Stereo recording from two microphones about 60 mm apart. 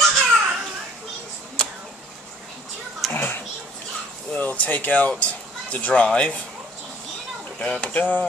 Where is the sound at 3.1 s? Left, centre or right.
Left.